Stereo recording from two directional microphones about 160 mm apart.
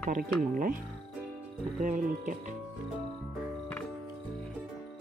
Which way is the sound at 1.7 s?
55° right (ahead or behind).